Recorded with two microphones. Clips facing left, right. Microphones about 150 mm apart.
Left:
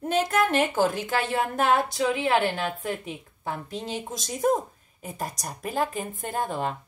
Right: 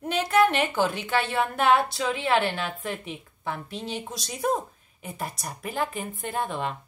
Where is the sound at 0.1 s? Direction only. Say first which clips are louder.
Right 1 dB; 45° left (ahead or behind).